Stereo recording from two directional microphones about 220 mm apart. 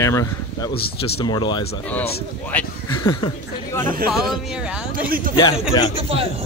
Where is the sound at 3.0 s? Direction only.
20° left (ahead or behind).